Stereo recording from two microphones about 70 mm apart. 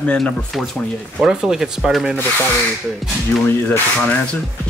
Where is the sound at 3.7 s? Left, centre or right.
Left.